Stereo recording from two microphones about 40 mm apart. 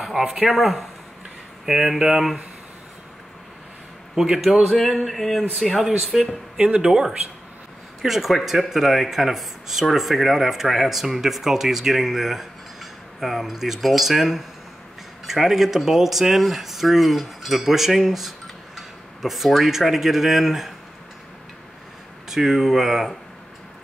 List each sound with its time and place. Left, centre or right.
0.2 s speech: centre
4.1 s a man's voice: centre
4.8 s speech: centre
6.6 s speech: right
6.9 s speech: centre
22.3 s speech: centre